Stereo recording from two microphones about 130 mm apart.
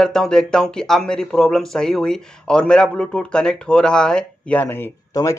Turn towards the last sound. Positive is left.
turn(degrees=30)  # may be behind; listen again after turning